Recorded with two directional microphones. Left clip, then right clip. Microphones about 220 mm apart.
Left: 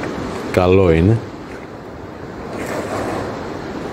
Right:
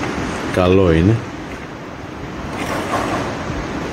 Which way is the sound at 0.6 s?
20° left (ahead or behind).